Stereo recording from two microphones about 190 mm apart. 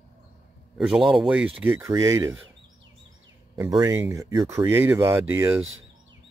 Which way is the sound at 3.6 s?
15° right (ahead or behind).